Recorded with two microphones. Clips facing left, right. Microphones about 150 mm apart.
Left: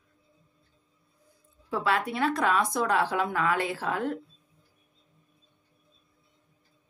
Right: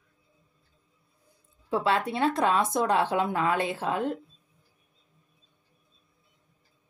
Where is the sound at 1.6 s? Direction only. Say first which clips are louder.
Right 2 dB; 25° right (ahead or behind).